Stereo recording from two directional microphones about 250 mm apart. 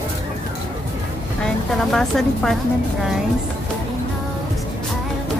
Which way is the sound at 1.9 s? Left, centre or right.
Centre.